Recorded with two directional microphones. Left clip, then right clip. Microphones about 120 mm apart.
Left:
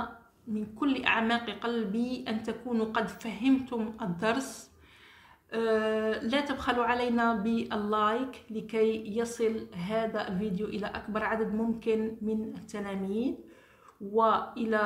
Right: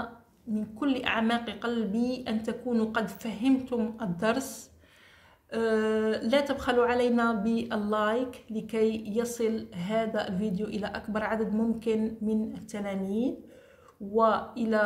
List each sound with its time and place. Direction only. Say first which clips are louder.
0.6 s a woman's voice: right 1 dB; 25° right (ahead or behind)